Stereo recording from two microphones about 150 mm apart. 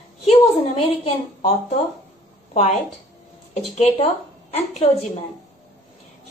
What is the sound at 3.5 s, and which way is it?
A woman's voice, 45° left (ahead or behind).